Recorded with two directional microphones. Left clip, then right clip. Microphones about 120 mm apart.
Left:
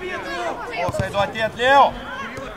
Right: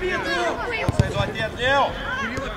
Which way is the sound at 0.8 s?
60° left (ahead or behind).